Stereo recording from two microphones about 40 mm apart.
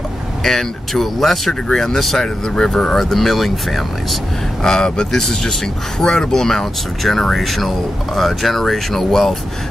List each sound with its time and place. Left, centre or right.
0.4 s speech: centre
3.0 s speech: centre
4.6 s speech: centre